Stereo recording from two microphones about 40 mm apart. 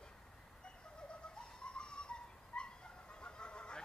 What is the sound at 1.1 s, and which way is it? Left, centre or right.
Dog, left.